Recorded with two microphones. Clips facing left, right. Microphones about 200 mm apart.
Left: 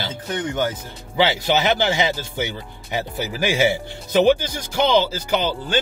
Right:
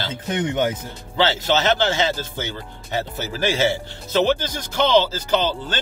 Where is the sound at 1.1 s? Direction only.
15° left (ahead or behind).